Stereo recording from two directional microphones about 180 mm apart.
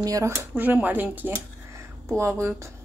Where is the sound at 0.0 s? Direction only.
20° right (ahead or behind).